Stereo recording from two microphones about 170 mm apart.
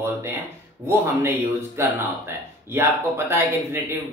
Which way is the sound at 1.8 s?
15° right (ahead or behind).